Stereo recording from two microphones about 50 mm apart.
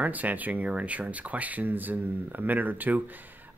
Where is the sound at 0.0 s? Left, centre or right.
Right.